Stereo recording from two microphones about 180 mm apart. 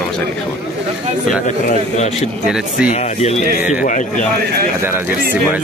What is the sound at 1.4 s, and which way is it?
Speech, 40° left (ahead or behind).